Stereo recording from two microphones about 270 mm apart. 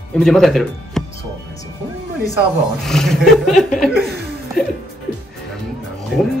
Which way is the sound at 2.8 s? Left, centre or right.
Centre.